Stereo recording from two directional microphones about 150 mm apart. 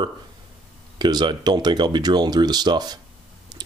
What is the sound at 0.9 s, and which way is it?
Speech, 30° right (ahead or behind).